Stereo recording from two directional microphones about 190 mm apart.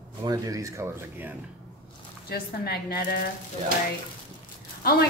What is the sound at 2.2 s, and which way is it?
Speech, 55° left (ahead or behind).